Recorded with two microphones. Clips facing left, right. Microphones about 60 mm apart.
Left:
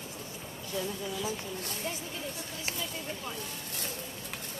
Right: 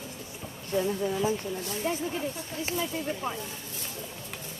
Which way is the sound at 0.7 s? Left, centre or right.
Right.